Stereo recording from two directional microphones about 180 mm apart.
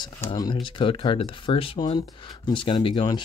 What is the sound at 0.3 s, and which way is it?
Speech, 25° left (ahead or behind).